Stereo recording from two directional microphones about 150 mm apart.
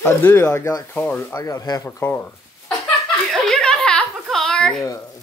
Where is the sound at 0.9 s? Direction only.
10° left (ahead or behind).